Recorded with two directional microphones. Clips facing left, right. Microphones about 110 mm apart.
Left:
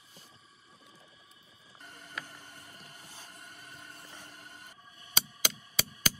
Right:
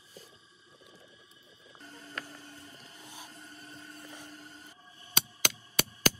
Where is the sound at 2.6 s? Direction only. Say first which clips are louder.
Even; 55° left (ahead or behind).